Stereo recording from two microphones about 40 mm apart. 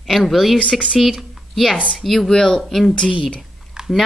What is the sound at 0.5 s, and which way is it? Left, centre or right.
Speech, left.